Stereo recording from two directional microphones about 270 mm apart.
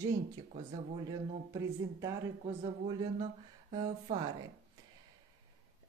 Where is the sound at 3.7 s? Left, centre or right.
Right.